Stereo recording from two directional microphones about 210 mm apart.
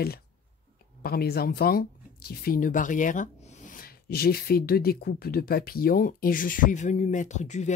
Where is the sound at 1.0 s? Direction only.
45° left (ahead or behind).